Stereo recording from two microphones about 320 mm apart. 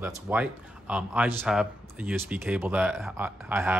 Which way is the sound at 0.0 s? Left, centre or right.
Centre.